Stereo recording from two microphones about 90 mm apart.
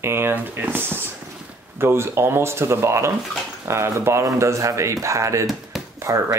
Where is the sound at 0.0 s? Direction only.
25° right (ahead or behind).